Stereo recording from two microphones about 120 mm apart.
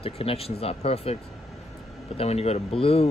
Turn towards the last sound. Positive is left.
turn(degrees=55)  # may be behind; listen again after turning